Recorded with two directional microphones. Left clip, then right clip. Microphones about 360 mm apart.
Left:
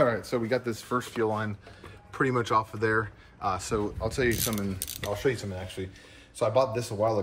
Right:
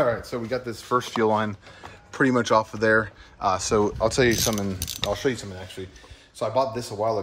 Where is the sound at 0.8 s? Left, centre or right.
Right.